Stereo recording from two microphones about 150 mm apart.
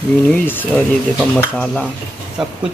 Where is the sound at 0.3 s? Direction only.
10° left (ahead or behind).